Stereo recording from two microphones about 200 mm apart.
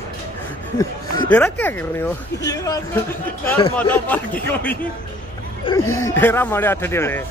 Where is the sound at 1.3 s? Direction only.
10° left (ahead or behind).